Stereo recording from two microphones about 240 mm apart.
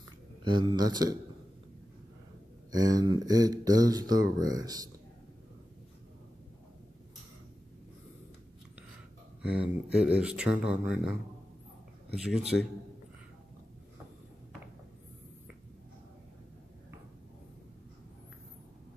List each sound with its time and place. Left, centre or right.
0.4 s speech: centre
2.7 s speech: centre
9.5 s speech: centre
12.2 s speech: centre